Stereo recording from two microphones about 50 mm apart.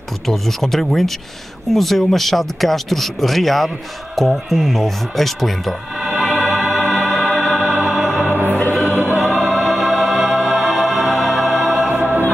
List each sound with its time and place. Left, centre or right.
0.3 s speech: centre
5.9 s music: centre
8.3 s music: right
9.2 s music: centre
11.9 s music: right